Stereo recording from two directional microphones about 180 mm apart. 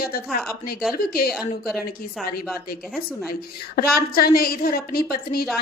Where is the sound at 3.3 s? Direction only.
55° left (ahead or behind).